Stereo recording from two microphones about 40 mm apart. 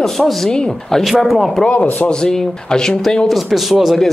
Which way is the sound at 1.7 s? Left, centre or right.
Left.